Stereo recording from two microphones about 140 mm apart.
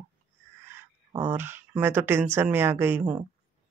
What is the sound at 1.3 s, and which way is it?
Speech, 15° right (ahead or behind).